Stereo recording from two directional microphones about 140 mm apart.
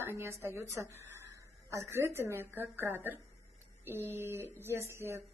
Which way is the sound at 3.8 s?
15° right (ahead or behind).